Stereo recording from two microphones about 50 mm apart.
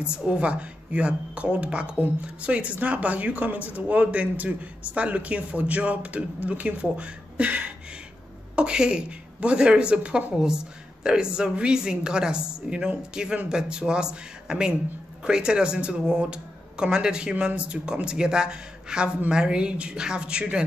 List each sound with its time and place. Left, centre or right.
0.3 s a woman's voice: right